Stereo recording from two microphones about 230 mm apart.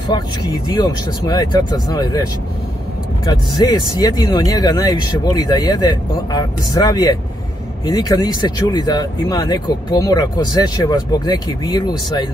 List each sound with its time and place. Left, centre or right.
0.1 s speech: centre
3.3 s speech: centre